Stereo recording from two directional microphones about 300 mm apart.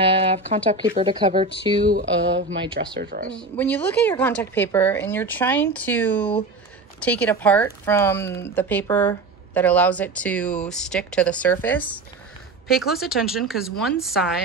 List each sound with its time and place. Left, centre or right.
0.0 s speech: centre
3.3 s speech: centre